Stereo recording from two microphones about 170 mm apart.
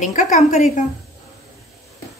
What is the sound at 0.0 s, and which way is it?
Speech, 45° left (ahead or behind).